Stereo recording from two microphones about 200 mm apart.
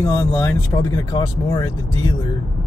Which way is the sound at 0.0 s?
15° left (ahead or behind).